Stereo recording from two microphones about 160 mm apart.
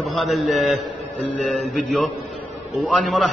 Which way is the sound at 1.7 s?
Centre (ahead or behind).